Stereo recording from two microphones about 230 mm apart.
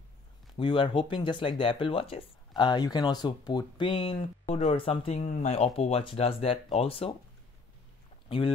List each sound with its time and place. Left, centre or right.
0.6 s speech: left
8.3 s speech: left